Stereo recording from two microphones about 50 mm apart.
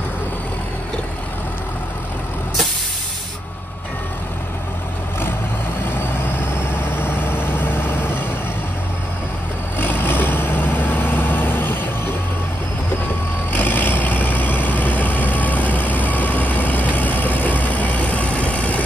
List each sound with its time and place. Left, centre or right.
5.9 s vehicle: left
9.8 s vehicle: left
13.5 s vehicle: left